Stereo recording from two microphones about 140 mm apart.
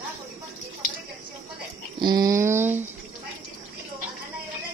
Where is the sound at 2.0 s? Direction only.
25° right (ahead or behind).